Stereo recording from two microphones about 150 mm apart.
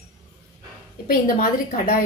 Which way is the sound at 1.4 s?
55° left (ahead or behind).